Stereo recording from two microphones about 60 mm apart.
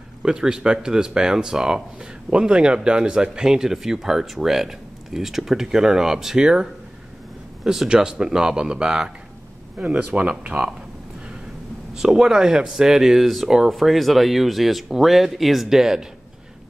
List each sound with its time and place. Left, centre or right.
0.2 s speech: centre
7.9 s speech: centre
11.9 s speech: centre